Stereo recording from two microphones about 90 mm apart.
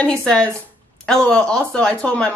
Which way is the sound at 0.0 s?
10° left (ahead or behind).